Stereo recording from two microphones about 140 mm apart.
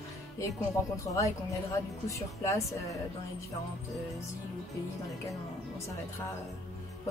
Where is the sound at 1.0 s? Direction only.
25° left (ahead or behind).